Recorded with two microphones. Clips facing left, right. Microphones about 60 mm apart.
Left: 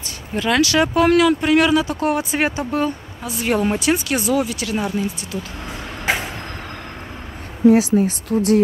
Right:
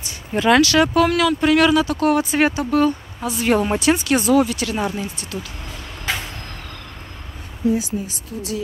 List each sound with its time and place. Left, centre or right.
0.6 s speech: centre
3.2 s speech: centre
6.1 s vehicle: left
7.6 s speech: left